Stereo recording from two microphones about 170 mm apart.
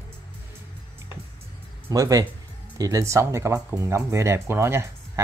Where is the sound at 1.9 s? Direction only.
20° right (ahead or behind).